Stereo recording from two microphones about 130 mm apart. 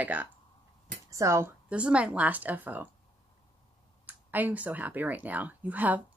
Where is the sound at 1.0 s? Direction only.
25° right (ahead or behind).